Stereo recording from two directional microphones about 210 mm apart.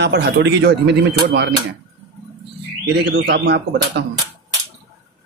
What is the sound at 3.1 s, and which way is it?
Speech, 55° right (ahead or behind).